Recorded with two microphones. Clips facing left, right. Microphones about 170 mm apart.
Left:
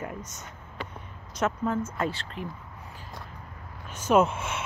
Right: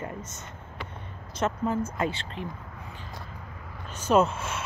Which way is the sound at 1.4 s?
5° right (ahead or behind).